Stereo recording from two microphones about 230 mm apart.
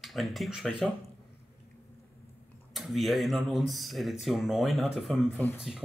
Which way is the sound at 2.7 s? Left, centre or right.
Centre.